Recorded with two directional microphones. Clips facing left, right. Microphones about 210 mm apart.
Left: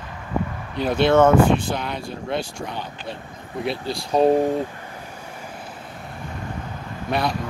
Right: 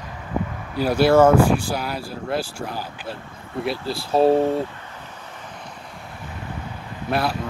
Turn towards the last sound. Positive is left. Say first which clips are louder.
# even
turn(degrees=-5)  # may be behind; listen again after turning